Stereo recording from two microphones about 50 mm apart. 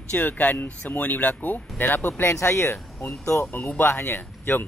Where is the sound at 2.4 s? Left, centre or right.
Left.